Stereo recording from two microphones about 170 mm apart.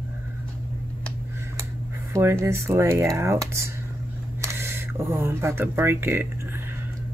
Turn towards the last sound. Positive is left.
turn(degrees=-15)  # may be behind; listen again after turning